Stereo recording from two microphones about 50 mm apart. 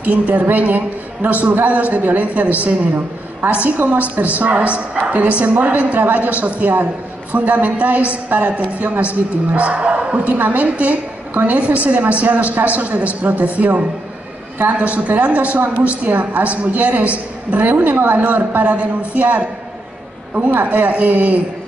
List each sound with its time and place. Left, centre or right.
0.0 s a woman's voice: right
3.6 s a woman's voice: right